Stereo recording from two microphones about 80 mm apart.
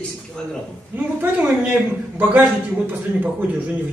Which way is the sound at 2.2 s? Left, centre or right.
Right.